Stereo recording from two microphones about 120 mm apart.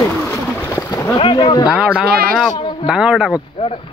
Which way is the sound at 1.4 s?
35° left (ahead or behind).